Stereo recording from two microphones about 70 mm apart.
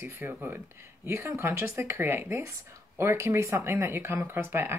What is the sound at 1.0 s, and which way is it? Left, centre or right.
Speech, right.